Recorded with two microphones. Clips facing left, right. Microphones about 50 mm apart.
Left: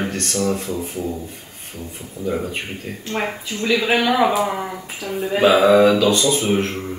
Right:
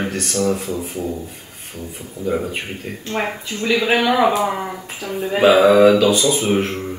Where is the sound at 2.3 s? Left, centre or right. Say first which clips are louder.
Right 2 dB; centre.